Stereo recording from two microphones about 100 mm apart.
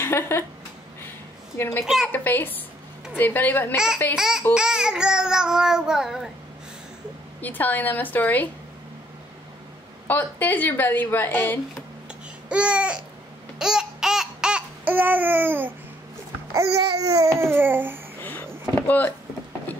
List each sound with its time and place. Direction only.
0.0 s speech: 25° left (ahead or behind)
1.6 s speech: 20° left (ahead or behind)
3.7 s child singing: 5° right (ahead or behind)
7.4 s a woman's voice: 20° left (ahead or behind)
10.0 s speech: 20° left (ahead or behind)
12.4 s child singing: 10° right (ahead or behind)
13.6 s babbling: 5° right (ahead or behind)
16.5 s babbling: 30° right (ahead or behind)
18.8 s speech: 15° left (ahead or behind)